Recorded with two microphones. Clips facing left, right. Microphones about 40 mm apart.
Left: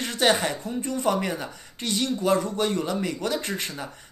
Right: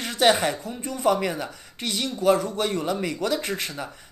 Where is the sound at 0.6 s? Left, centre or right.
Centre.